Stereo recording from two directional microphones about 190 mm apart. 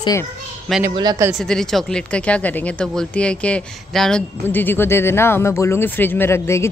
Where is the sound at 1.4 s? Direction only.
5° left (ahead or behind).